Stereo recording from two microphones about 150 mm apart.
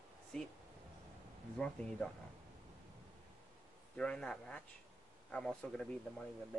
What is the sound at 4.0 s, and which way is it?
Speech, 5° left (ahead or behind).